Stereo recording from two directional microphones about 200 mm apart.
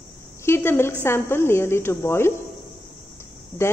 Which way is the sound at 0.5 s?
10° left (ahead or behind).